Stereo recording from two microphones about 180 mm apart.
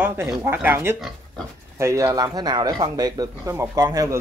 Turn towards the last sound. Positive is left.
turn(degrees=-20)  # may be behind; listen again after turning